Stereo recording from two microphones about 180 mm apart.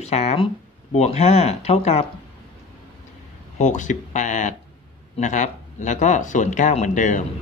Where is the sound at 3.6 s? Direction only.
40° left (ahead or behind).